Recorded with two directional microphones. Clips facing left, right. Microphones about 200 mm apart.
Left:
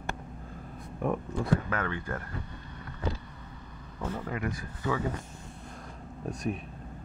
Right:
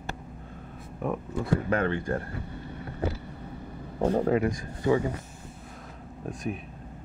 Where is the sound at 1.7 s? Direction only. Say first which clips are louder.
Right 7 dB; 30° right (ahead or behind).